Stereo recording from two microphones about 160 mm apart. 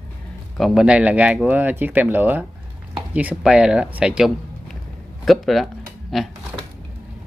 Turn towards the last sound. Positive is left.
turn(degrees=0)  # may be behind; listen again after turning